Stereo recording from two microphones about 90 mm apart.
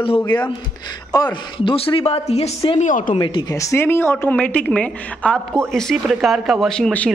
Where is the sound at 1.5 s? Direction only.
85° left.